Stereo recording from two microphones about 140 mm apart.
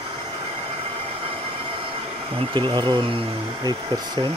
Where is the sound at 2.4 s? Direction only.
35° right (ahead or behind).